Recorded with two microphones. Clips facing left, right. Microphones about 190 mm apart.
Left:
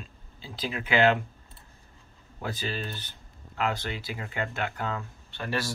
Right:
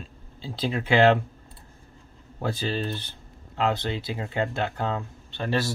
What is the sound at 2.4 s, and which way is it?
Speech, 30° right (ahead or behind).